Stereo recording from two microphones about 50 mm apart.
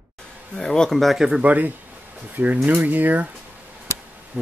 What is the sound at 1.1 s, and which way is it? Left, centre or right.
Speech, centre.